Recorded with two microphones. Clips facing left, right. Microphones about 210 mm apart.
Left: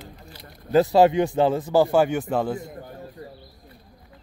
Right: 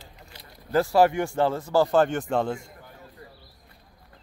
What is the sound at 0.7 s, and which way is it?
Speech, 20° left (ahead or behind).